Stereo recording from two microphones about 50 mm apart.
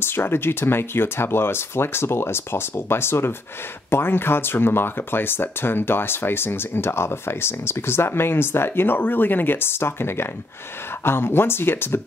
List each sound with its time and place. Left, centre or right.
0.0 s speech: left